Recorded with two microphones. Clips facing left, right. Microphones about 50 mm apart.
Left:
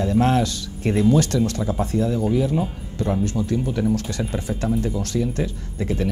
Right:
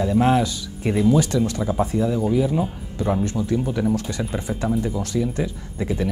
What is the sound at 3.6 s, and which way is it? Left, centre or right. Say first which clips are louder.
Speech: even; centre.